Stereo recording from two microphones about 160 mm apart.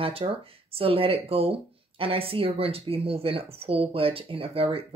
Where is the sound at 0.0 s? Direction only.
35° right (ahead or behind).